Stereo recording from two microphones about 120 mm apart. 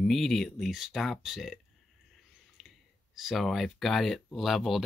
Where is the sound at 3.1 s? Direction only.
Centre (ahead or behind).